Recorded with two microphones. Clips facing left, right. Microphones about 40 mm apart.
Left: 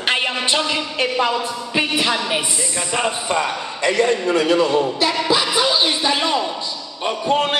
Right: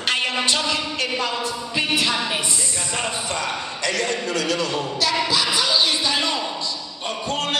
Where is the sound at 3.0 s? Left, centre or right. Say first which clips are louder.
Left 7 dB; left.